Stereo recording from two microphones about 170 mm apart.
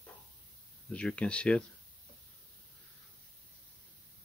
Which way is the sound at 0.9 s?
5° left (ahead or behind).